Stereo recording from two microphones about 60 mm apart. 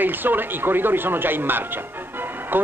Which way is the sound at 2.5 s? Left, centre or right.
Right.